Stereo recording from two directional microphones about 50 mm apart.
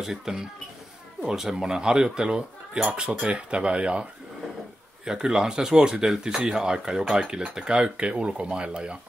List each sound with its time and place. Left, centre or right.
0.0 s speech: centre
5.0 s speech: centre